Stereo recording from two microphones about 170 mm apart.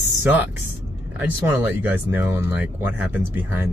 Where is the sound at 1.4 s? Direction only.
10° right (ahead or behind).